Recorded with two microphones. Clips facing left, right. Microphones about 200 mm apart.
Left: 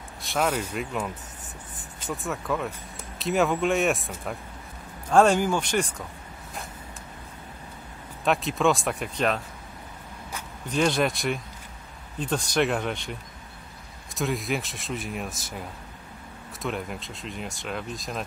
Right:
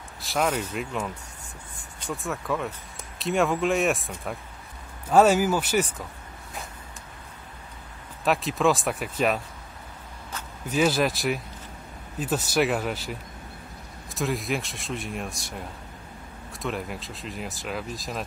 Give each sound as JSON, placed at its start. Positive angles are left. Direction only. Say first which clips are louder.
{"t": 0.2, "sound": "speech", "louder": "even", "side_deg": 0}
{"t": 8.2, "sound": "speech", "louder": "even", "side_deg": 0}
{"t": 10.7, "sound": "speech", "louder": "right 1 dB", "side_deg": -5}
{"t": 16.6, "sound": "speech", "louder": "even", "side_deg": 0}